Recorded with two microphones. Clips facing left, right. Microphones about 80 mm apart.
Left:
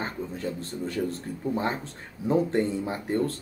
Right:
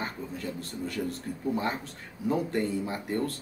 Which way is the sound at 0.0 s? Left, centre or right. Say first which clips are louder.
Left 3 dB; left.